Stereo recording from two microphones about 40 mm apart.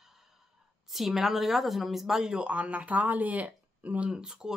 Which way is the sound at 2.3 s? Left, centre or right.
Right.